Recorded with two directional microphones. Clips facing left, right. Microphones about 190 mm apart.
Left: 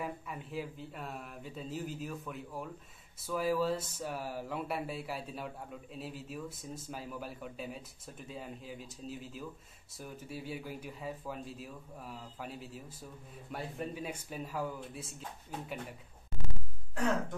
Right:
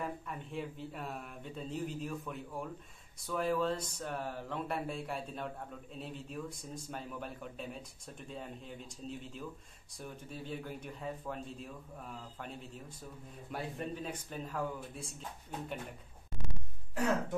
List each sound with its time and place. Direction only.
0.0 s speech: 5° left (ahead or behind)